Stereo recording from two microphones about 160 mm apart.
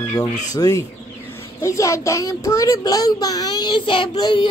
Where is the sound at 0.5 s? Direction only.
20° left (ahead or behind).